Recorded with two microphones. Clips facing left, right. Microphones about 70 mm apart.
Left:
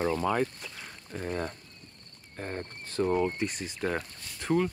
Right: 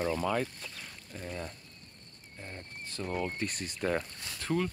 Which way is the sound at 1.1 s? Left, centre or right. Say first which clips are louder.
Left 7 dB; left.